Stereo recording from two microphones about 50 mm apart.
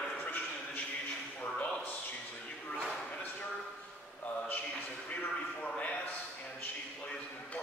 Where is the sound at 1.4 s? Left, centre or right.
Left.